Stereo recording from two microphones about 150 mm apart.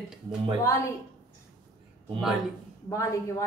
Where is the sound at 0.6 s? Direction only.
20° left (ahead or behind).